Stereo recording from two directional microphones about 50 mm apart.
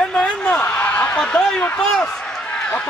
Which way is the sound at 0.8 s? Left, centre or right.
Left.